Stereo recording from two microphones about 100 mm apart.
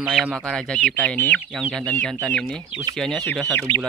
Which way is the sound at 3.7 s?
60° right (ahead or behind).